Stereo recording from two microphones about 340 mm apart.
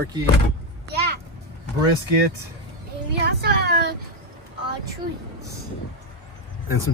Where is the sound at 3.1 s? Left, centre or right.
Right.